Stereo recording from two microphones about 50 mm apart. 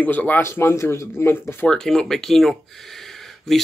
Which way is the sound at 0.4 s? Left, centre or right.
Left.